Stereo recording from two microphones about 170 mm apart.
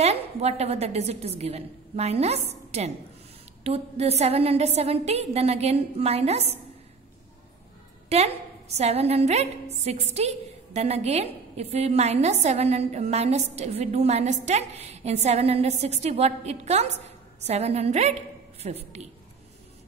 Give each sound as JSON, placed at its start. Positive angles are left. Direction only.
{"t": 0.0, "sound": "a woman's voice", "side_deg": -40}
{"t": 8.1, "sound": "a woman's voice", "side_deg": -40}